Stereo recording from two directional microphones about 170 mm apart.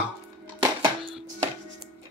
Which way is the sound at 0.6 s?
25° right (ahead or behind).